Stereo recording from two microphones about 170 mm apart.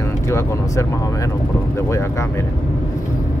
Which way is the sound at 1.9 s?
15° left (ahead or behind).